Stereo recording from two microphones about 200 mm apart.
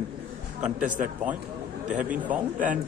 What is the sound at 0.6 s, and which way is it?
Speech, 40° right (ahead or behind).